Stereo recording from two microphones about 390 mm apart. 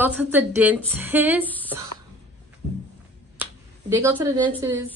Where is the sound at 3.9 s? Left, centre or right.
Centre.